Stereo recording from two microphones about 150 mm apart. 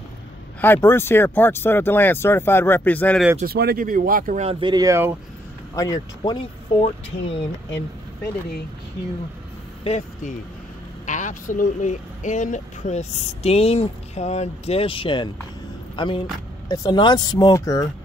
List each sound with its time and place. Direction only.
0.6 s speech: 15° left (ahead or behind)
3.4 s speech: 90° right; by 4.4 s 70° right (ahead or behind)
4.4 s speech: 35° right (ahead or behind); by 5.1 s 20° right (ahead or behind)
5.8 s speech: 25° left (ahead or behind)
6.8 s speech: 40° left (ahead or behind)
9.8 s speech: 45° left (ahead or behind); by 17.8 s 20° left (ahead or behind)